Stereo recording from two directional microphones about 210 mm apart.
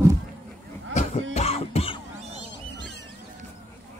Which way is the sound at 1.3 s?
30° left (ahead or behind).